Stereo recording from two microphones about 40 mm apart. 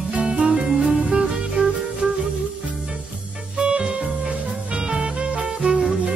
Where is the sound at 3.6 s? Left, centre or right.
Right.